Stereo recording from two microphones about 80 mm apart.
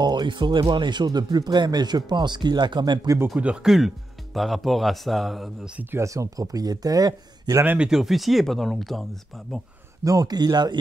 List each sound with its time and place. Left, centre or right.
0.0 s speech: right
3.6 s speech: centre
5.9 s speech: right
7.6 s speech: right
7.9 s speech: centre
10.0 s speech: right